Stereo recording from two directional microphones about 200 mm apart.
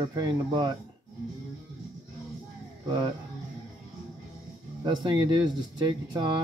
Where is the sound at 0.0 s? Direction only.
20° right (ahead or behind).